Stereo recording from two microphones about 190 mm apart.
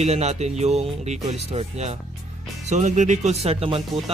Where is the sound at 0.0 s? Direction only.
35° right (ahead or behind).